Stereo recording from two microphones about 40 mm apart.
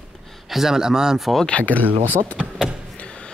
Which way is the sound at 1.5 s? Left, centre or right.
Left.